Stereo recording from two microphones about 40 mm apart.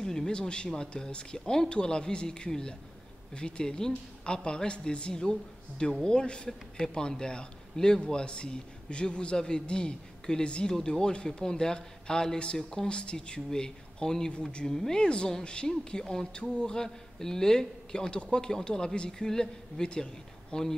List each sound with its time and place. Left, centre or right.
0.0 s a sound: centre
0.3 s speech: left
12.8 s speech: left